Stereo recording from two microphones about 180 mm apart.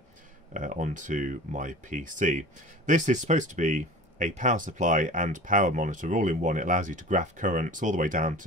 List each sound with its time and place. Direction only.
0.5 s speech: 45° right (ahead or behind)